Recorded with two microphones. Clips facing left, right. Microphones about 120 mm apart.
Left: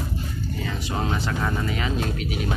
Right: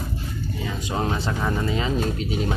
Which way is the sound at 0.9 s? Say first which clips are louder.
Right 2 dB; 20° right (ahead or behind).